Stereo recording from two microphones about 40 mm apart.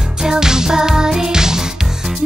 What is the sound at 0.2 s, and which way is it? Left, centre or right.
Music, centre.